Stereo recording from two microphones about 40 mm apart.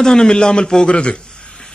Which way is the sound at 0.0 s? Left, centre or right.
Centre.